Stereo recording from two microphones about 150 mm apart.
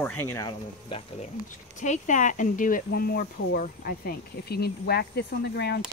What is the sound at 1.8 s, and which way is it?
Speech, 55° left (ahead or behind).